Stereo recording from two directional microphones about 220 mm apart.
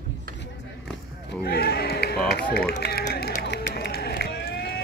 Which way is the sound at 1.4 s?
45° left (ahead or behind).